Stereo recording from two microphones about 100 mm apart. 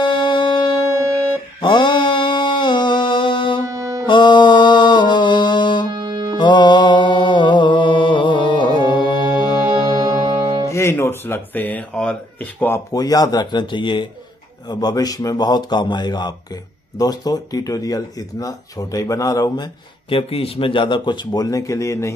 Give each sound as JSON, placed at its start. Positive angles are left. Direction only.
{"t": 0.0, "sound": "music", "side_deg": 50}
{"t": 0.9, "sound": "music", "side_deg": -30}
{"t": 1.6, "sound": "mantra", "side_deg": 50}
{"t": 3.6, "sound": "music", "side_deg": -35}
{"t": 4.1, "sound": "music", "side_deg": 50}
{"t": 5.9, "sound": "music", "side_deg": -50}
{"t": 6.3, "sound": "mantra", "side_deg": 50}
{"t": 8.8, "sound": "music", "side_deg": 50}
{"t": 9.3, "sound": "music", "side_deg": -40}
{"t": 10.7, "sound": "speech", "side_deg": 25}
{"t": 12.9, "sound": "speech", "side_deg": 40}
{"t": 14.7, "sound": "speech", "side_deg": 40}
{"t": 20.1, "sound": "speech", "side_deg": 70}